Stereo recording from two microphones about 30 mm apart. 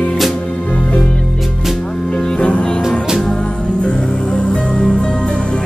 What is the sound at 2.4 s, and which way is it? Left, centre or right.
Music, left.